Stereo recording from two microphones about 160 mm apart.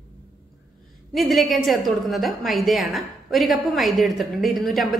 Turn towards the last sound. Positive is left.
turn(degrees=0)  # may be behind; listen again after turning